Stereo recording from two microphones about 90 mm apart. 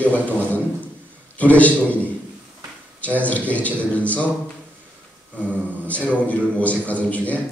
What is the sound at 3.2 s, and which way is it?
A man's voice, 15° left (ahead or behind).